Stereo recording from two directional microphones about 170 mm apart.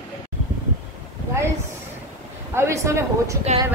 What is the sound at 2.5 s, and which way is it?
Speech, 15° right (ahead or behind).